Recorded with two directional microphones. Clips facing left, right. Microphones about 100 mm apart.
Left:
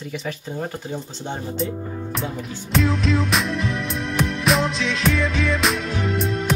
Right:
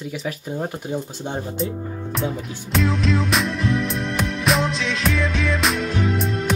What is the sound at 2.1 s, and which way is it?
Music, centre (ahead or behind).